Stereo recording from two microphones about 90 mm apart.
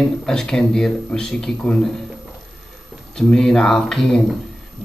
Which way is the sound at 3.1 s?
5° left (ahead or behind).